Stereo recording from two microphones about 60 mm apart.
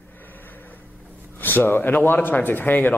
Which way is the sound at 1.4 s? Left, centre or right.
Left.